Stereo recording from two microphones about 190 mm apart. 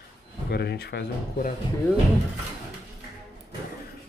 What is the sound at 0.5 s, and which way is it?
Speech, 55° left (ahead or behind).